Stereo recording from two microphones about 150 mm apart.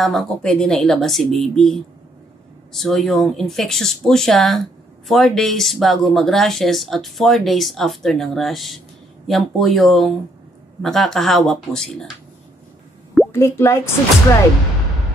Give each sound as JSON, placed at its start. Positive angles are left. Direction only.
{"t": 0.0, "sound": "speech", "side_deg": 0}
{"t": 13.3, "sound": "speech", "side_deg": 20}